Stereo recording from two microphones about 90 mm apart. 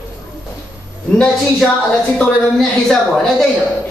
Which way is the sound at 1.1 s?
10° left (ahead or behind).